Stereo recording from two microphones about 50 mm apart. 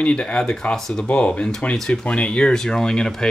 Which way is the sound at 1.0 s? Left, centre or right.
Left.